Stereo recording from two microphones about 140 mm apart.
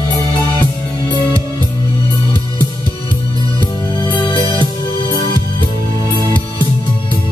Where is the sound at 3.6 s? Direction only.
35° left (ahead or behind).